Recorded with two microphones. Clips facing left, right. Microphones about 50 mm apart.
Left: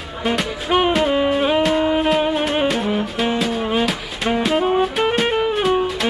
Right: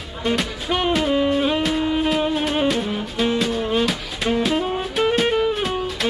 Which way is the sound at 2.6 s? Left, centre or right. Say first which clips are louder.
Left 2 dB; centre.